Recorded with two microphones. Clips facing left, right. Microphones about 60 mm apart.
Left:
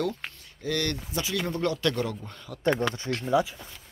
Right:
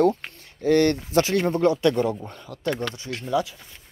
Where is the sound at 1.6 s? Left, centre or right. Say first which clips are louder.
Right 6 dB; right.